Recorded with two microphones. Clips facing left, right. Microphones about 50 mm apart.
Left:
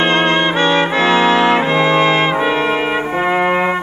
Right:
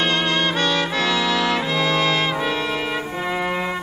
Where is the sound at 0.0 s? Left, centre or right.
Left.